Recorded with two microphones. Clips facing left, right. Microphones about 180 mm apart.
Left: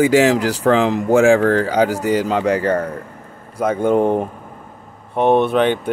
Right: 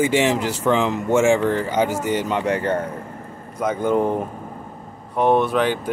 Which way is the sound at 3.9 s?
25° left (ahead or behind).